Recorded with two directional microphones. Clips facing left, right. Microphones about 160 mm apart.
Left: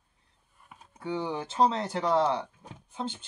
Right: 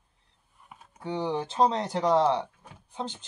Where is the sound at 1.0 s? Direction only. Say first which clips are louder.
Right 2 dB; 35° right (ahead or behind).